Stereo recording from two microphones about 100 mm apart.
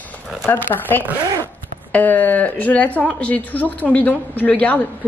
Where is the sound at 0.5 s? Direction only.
20° left (ahead or behind).